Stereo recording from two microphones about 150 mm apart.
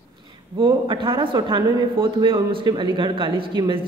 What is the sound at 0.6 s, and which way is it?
Speech, 35° right (ahead or behind).